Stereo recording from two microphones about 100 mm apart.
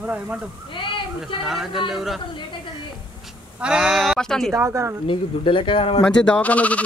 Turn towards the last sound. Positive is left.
turn(degrees=15)  # may be behind; listen again after turning